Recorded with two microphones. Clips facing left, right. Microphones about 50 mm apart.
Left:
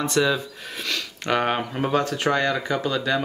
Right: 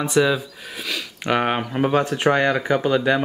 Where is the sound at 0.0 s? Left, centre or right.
Centre.